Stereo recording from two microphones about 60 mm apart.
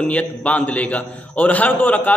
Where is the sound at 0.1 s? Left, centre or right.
Left.